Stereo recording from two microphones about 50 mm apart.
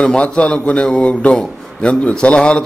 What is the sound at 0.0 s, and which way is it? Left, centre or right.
A man's voice, centre.